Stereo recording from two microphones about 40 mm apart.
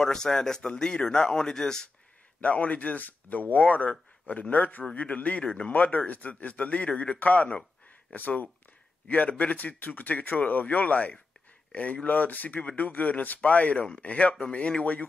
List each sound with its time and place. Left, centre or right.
0.0 s speech: centre
2.4 s speech: left
5.4 s speech: left
5.7 s speech: left